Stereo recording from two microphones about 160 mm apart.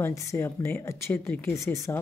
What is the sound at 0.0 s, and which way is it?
Speech, 15° left (ahead or behind).